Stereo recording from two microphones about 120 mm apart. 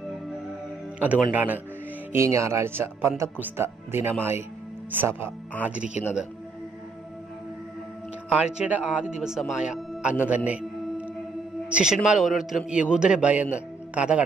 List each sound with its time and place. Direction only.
0.9 s a man's voice: 15° right (ahead or behind)
8.3 s a man's voice: 10° right (ahead or behind)